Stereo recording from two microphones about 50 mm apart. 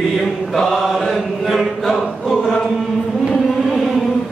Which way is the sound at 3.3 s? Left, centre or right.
Centre.